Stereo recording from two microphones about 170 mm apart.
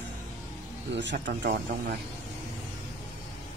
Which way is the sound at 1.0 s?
90° right.